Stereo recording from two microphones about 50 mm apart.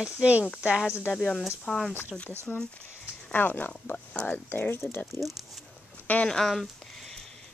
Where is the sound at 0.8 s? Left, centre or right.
Left.